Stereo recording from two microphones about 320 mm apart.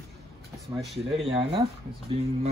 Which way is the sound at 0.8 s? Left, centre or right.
Centre.